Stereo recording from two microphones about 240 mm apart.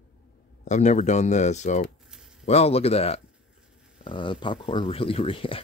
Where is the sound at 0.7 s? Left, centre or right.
Left.